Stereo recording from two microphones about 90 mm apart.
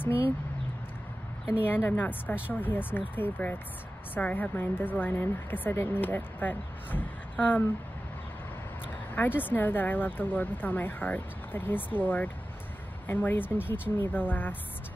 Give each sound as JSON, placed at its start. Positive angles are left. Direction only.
{"t": 1.5, "sound": "a woman's voice", "side_deg": 20}
{"t": 9.1, "sound": "a woman's voice", "side_deg": 20}